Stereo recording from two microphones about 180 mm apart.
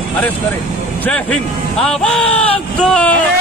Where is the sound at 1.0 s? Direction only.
5° left (ahead or behind).